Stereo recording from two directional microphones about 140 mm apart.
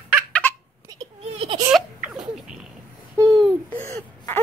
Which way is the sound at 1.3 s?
45° right (ahead or behind).